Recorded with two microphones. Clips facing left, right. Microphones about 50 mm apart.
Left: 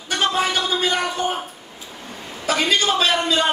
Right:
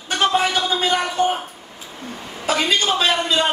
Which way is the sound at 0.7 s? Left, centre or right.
Right.